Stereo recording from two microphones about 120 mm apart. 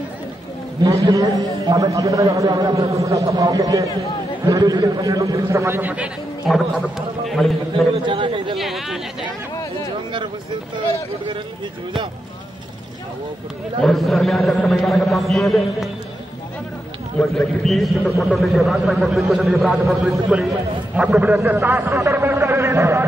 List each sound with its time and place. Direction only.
0.8 s a man's voice: 30° right (ahead or behind)
6.4 s a man's voice: centre (ahead or behind)
7.9 s a sound: 45° right (ahead or behind)
8.5 s a man's voice: centre (ahead or behind)
13.7 s a man's voice: 5° left (ahead or behind)
17.2 s a man's voice: 5° left (ahead or behind); by 23.0 s 20° right (ahead or behind)